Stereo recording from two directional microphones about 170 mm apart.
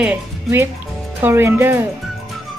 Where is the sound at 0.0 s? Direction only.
10° right (ahead or behind).